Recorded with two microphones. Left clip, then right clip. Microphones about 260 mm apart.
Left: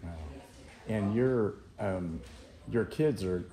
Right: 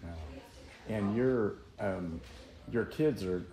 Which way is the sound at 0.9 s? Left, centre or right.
Left.